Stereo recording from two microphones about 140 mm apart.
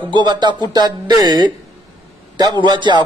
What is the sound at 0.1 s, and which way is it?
A man's voice, 30° right (ahead or behind).